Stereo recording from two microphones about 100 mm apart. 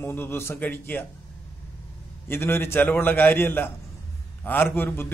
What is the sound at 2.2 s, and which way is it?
A man's voice, 25° left (ahead or behind).